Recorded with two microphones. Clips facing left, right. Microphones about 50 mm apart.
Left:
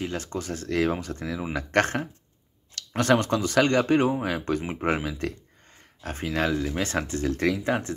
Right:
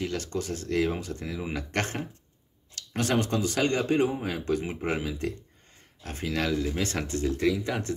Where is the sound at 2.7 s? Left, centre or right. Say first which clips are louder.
Left 3 dB; left.